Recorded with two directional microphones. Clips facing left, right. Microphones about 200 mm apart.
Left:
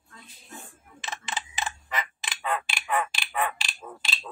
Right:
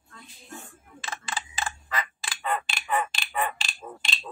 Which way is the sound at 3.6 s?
5° left (ahead or behind).